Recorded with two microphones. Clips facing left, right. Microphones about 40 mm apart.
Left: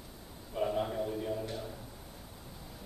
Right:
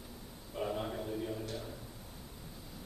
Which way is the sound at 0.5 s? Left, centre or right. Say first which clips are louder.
Left 5 dB; centre.